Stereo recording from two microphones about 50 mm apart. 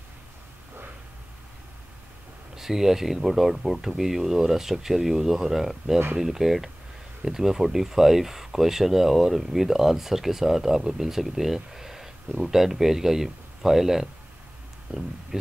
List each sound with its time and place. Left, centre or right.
2.5 s speech: centre
14.9 s speech: right